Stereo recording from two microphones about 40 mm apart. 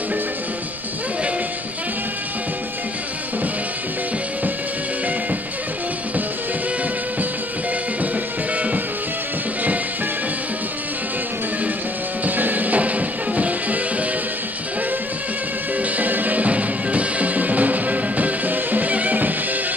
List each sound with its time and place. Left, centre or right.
8.5 s music: right
12.3 s music: right
15.8 s music: right